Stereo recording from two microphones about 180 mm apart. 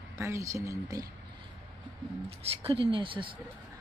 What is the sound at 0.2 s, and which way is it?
Speech, 15° right (ahead or behind).